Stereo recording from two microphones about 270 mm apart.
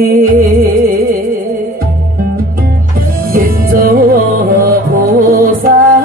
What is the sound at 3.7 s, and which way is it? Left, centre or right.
Music, right.